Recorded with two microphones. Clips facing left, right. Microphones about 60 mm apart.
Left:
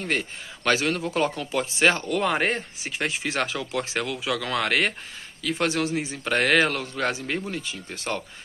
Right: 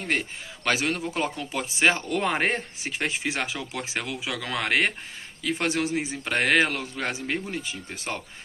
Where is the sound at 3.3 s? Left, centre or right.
Centre.